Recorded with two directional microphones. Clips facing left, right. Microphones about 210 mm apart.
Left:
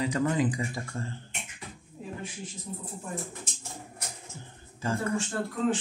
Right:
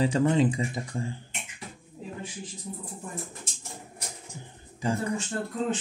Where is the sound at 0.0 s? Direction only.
30° right (ahead or behind).